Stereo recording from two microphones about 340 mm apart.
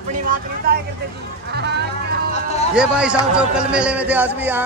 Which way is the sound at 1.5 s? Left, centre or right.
Right.